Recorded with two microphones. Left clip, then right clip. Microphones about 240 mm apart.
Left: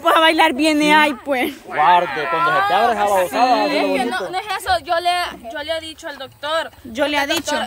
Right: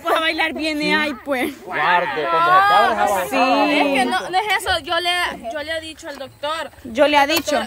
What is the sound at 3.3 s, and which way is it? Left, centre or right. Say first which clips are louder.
Speech: left 1 dB; left.